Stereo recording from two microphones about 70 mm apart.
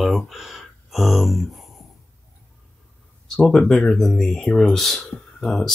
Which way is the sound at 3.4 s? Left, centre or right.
Centre.